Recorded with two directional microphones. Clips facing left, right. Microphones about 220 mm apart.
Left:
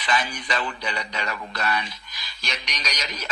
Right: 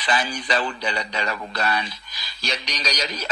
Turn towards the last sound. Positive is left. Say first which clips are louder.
# right 5 dB
turn(degrees=-30)  # may be behind; listen again after turning